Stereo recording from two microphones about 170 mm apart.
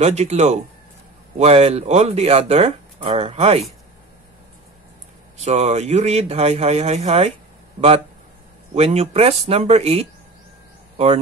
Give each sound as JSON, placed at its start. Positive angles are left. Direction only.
{"t": 0.0, "sound": "speech", "side_deg": -40}
{"t": 5.4, "sound": "speech", "side_deg": -40}
{"t": 8.7, "sound": "speech", "side_deg": -35}